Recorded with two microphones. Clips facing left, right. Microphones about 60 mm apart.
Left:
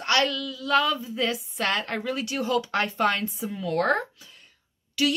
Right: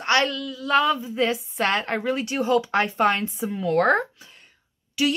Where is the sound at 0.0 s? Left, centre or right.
Right.